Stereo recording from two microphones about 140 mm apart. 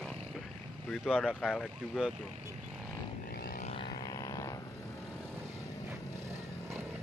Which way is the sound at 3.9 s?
30° left (ahead or behind).